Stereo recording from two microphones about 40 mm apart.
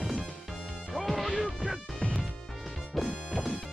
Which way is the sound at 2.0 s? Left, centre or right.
Left.